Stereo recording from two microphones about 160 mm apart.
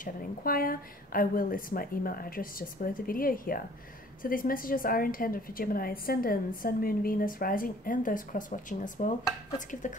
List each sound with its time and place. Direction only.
0.0 s a woman's voice: 65° left (ahead or behind)